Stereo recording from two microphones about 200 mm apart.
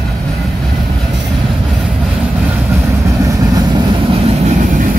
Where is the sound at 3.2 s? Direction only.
15° right (ahead or behind).